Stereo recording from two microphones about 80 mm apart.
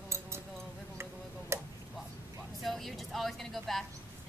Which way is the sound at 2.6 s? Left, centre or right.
Centre.